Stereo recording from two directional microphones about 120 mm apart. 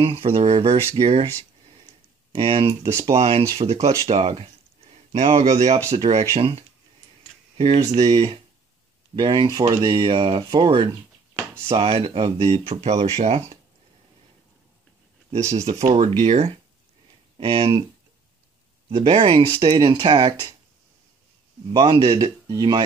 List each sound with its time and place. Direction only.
0.0 s speech: 50° right (ahead or behind)
2.3 s speech: 50° right (ahead or behind)
4.1 s speech: 55° right (ahead or behind)
9.1 s speech: 40° right (ahead or behind)
12.8 s speech: 65° right (ahead or behind)
15.5 s speech: 70° right (ahead or behind)
17.4 s speech: 50° right (ahead or behind)
18.9 s speech: 55° right (ahead or behind); by 20.5 s 40° right (ahead or behind)
21.7 s speech: 40° right (ahead or behind)